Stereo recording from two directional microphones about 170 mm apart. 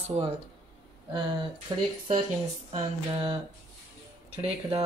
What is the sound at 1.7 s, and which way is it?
Speech, 25° right (ahead or behind).